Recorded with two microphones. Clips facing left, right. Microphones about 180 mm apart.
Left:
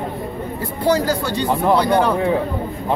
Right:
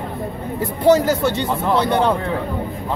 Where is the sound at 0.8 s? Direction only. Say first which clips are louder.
Right 4 dB; 20° right (ahead or behind).